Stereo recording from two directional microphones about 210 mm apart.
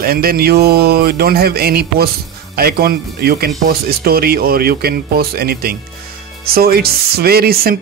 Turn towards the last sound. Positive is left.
turn(degrees=-45)  # may be behind; listen again after turning